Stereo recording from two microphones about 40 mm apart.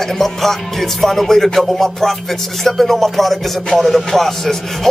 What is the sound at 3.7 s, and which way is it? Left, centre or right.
A man's voice, centre.